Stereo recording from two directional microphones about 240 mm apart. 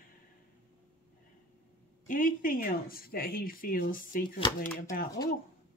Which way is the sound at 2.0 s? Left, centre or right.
Left.